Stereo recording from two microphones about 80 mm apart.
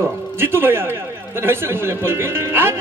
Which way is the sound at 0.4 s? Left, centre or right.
Right.